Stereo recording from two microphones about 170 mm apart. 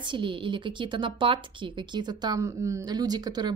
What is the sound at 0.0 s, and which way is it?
A woman's voice, 30° right (ahead or behind).